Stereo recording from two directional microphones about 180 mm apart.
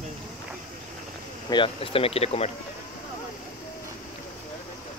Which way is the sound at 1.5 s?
30° left (ahead or behind).